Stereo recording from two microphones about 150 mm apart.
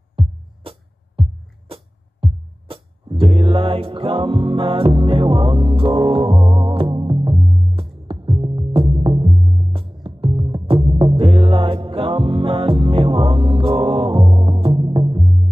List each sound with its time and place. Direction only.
0.1 s music: 35° right (ahead or behind)